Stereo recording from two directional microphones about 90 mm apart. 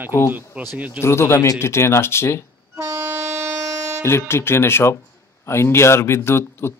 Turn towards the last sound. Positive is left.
turn(degrees=30)  # may be behind; listen again after turning